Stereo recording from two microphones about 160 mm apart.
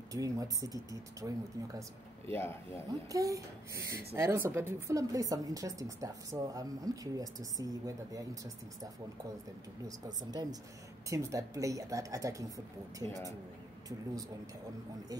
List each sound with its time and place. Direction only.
0.1 s a woman's voice: 20° right (ahead or behind)
2.3 s speech: 15° left (ahead or behind)
2.9 s a woman's voice: 20° right (ahead or behind)
9.8 s a woman's voice: 25° right (ahead or behind)